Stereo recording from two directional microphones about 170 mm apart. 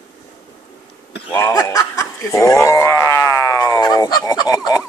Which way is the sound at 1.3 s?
15° left (ahead or behind).